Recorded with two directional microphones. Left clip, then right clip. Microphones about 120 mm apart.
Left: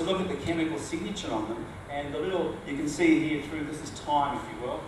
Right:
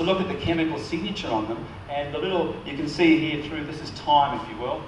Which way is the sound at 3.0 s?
35° left (ahead or behind).